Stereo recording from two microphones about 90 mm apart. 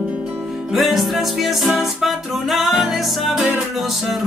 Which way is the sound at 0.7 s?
Centre (ahead or behind).